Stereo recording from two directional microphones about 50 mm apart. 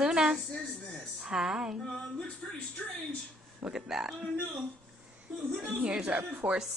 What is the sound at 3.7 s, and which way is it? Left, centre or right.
Female singing, centre.